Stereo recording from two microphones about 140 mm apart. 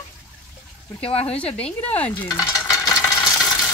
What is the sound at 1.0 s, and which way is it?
Speech, 45° left (ahead or behind).